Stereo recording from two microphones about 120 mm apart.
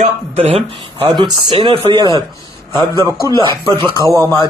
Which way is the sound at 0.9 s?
40° right (ahead or behind).